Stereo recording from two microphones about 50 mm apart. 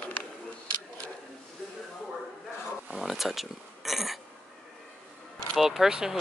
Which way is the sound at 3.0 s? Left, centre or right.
Centre.